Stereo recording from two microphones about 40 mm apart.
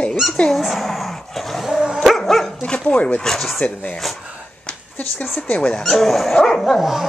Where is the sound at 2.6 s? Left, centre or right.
Left.